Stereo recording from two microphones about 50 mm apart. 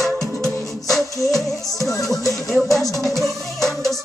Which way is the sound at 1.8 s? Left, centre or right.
Left.